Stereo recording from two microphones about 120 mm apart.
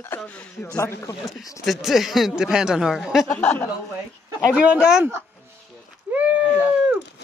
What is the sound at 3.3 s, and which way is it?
Speech, 15° left (ahead or behind).